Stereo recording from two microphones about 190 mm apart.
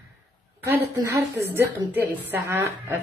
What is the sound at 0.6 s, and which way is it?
A woman's voice, 15° right (ahead or behind).